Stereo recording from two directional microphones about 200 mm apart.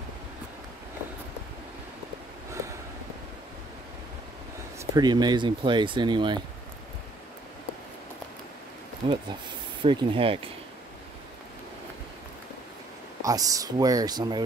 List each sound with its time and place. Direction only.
4.7 s speech: 20° right (ahead or behind)
9.0 s speech: 25° right (ahead or behind)
13.2 s speech: 15° right (ahead or behind)